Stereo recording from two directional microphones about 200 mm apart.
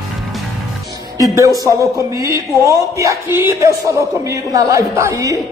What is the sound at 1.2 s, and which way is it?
A man's voice, 15° right (ahead or behind).